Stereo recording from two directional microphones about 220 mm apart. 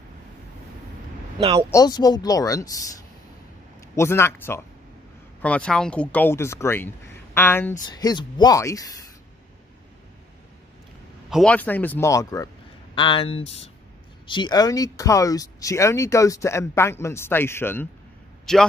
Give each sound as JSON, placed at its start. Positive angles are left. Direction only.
{"t": 1.7, "sound": "speech", "side_deg": 15}
{"t": 3.9, "sound": "speech", "side_deg": 10}
{"t": 11.2, "sound": "a man's voice", "side_deg": 0}